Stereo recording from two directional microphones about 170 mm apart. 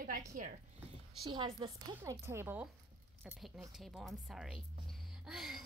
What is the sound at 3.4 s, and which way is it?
A woman's voice, centre (ahead or behind).